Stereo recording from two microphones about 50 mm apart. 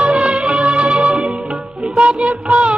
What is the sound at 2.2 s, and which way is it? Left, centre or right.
Music of bollywood, right.